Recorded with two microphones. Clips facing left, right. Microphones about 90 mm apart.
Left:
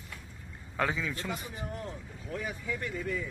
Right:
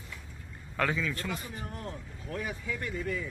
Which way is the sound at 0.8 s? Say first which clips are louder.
Right 1 dB; 15° left (ahead or behind).